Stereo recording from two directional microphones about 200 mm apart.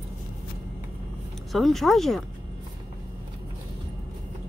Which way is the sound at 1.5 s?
Centre (ahead or behind).